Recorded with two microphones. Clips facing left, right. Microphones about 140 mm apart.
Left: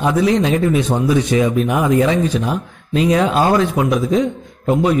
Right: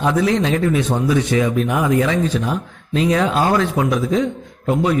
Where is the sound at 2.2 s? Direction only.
15° left (ahead or behind).